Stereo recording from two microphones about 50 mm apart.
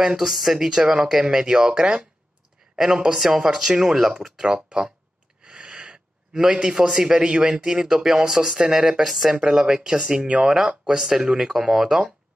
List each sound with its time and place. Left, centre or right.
0.0 s speech: centre